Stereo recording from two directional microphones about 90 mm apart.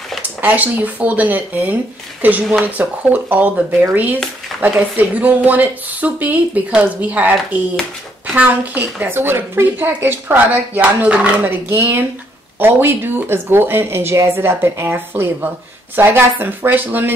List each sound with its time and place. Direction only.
0.4 s a woman's voice: 20° right (ahead or behind)